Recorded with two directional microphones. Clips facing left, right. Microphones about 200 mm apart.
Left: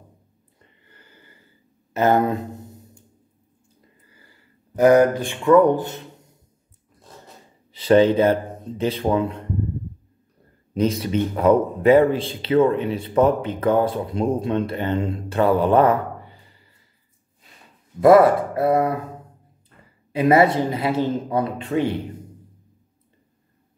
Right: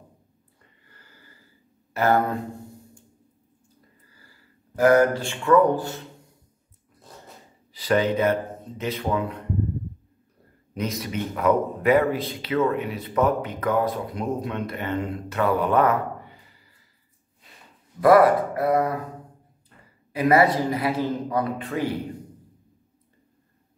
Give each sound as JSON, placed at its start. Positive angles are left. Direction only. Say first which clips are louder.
{"t": 0.6, "sound": "a sound", "louder": "left 4 dB", "side_deg": 20}
{"t": 2.0, "sound": "a man's voice", "louder": "left 3 dB", "side_deg": 20}
{"t": 4.7, "sound": "a man's voice", "louder": "left 3 dB", "side_deg": 15}
{"t": 7.7, "sound": "speech", "louder": "left 7 dB", "side_deg": 25}
{"t": 10.7, "sound": "a man's voice", "louder": "left 8 dB", "side_deg": 30}
{"t": 18.0, "sound": "a man's voice", "louder": "left 3 dB", "side_deg": 25}
{"t": 20.1, "sound": "a man's voice", "louder": "left 3 dB", "side_deg": 25}